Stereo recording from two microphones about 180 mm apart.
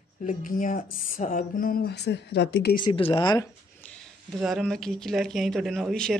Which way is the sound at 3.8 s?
10° left (ahead or behind).